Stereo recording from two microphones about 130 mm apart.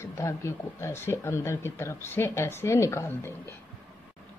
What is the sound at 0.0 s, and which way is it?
Speech, 20° left (ahead or behind).